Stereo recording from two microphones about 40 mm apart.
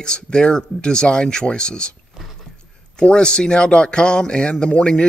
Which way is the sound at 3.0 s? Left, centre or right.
Left.